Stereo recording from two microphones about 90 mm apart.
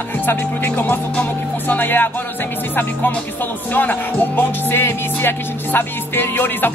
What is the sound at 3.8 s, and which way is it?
Speech, 20° left (ahead or behind).